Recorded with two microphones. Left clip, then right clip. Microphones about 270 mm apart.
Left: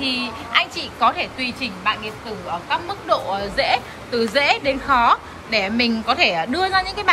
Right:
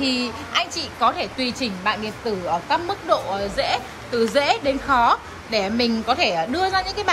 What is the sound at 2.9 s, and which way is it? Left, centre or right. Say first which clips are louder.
A woman's voice: even; centre.